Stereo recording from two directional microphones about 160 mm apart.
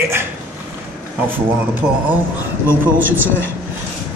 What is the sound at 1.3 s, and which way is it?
Speech, 10° right (ahead or behind).